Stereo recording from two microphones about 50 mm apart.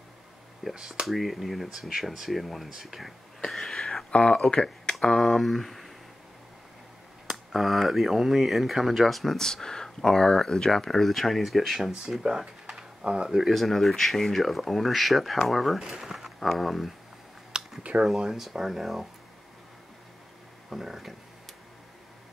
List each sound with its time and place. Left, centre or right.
0.7 s speech: centre
1.0 s speech: centre
3.4 s whispering: centre
4.1 s speech: left; by 5.9 s centre
7.2 s speech: centre
13.5 s speech: centre
17.5 s computer keyboard: centre
18.0 s speech: centre
20.7 s speech: centre